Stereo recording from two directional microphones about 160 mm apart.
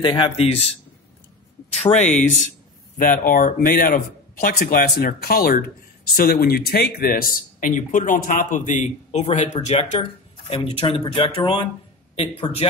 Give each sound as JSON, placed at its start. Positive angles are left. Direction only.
{"t": 0.0, "sound": "speech", "side_deg": 30}
{"t": 1.8, "sound": "speech", "side_deg": 45}
{"t": 3.0, "sound": "speech", "side_deg": 60}
{"t": 10.5, "sound": "speech", "side_deg": 35}